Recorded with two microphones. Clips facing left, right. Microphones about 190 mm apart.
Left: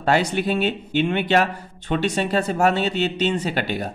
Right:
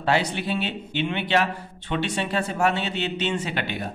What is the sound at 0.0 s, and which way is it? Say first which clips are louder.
Speech: left 4 dB; 45° left (ahead or behind).